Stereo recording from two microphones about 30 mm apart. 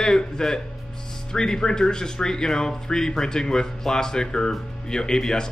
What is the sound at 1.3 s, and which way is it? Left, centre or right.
Speech, left.